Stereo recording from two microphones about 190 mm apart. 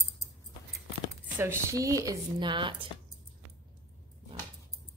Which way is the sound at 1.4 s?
15° right (ahead or behind).